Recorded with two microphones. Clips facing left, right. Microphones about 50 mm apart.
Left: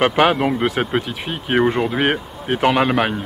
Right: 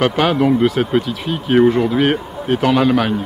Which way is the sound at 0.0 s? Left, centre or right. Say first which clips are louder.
Right 1 dB; left.